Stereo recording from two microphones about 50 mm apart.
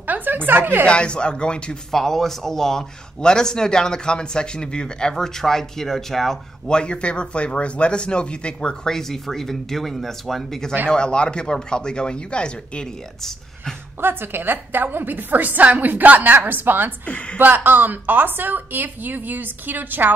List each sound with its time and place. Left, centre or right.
0.0 s a sound: right
0.5 s speech: right
0.8 s speech: left
1.9 s speech: centre
6.7 s speech: centre
8.9 s speech: centre
10.9 s speech: centre
14.0 s a woman's voice: right
17.0 s a woman's voice: left
17.4 s a woman's voice: right